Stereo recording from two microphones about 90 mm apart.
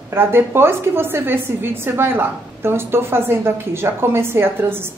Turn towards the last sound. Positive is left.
turn(degrees=-25)  # may be behind; listen again after turning